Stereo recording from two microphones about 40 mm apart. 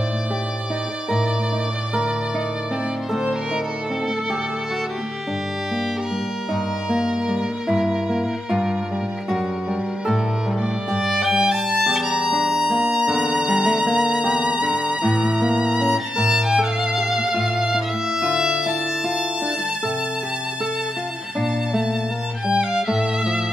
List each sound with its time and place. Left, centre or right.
6.9 s music: centre
10.9 s violin: centre
14.3 s music: right
22.5 s music: centre